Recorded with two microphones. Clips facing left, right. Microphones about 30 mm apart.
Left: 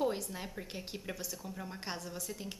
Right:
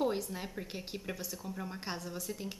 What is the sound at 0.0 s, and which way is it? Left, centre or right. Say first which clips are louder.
A woman's voice: right 1 dB; centre.